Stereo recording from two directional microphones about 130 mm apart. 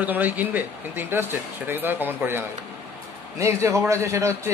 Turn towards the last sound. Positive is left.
turn(degrees=-20)  # may be behind; listen again after turning